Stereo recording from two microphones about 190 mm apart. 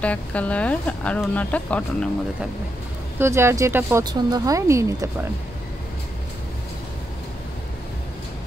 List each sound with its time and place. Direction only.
0.0 s speech: 5° left (ahead or behind)
3.2 s speech: 15° right (ahead or behind)